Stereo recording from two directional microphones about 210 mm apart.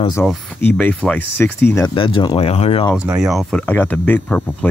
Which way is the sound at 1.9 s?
25° left (ahead or behind).